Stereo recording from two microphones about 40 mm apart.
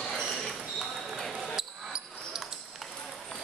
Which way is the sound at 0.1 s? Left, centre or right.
Centre.